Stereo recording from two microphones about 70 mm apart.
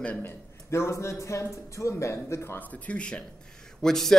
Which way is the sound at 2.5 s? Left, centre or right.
Centre.